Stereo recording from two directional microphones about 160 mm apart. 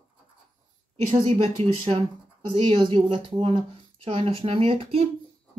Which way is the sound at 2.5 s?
35° right (ahead or behind).